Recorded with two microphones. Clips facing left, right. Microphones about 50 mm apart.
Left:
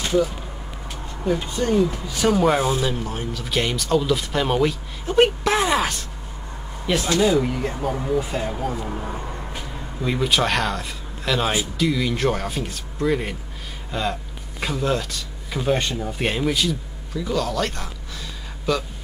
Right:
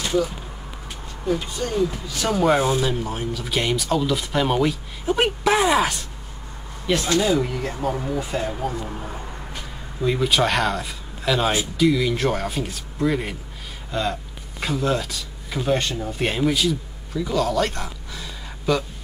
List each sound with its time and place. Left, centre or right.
1.3 s speech: centre
2.3 s speech: centre
6.9 s speech: centre